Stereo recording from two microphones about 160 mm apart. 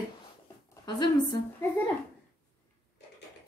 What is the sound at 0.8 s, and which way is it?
Speech, 30° left (ahead or behind).